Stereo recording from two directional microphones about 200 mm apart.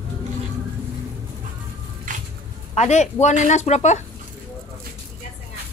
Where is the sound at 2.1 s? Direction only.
40° right (ahead or behind).